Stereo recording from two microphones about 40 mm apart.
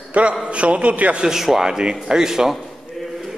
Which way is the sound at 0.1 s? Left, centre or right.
Right.